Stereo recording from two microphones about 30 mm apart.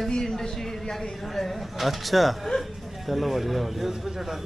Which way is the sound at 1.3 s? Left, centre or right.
Centre.